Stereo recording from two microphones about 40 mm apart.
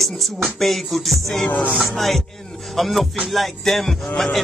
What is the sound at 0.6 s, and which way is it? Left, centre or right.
Music, centre.